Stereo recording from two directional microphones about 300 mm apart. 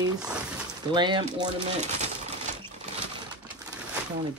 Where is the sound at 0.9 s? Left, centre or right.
Centre.